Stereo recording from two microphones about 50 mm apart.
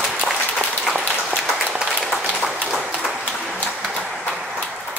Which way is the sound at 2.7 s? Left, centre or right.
Centre.